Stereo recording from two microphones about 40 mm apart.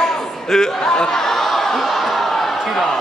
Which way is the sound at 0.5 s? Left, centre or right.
Centre.